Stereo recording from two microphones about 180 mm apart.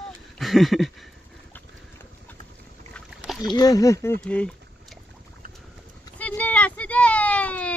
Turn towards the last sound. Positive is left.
turn(degrees=5)  # may be behind; listen again after turning